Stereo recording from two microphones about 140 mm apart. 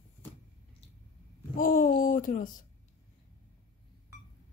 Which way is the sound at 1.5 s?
85° left.